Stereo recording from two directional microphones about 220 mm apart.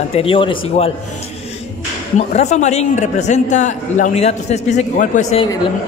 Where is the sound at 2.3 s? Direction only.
30° left (ahead or behind).